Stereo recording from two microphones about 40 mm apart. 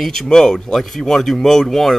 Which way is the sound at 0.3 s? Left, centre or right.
Centre.